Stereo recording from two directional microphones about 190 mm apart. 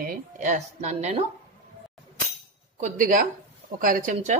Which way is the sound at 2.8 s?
40° right (ahead or behind).